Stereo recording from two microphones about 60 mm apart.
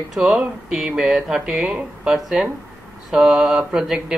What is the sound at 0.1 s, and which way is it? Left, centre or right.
Speech, centre.